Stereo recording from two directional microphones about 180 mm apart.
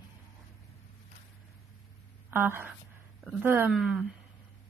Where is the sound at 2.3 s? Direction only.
10° right (ahead or behind).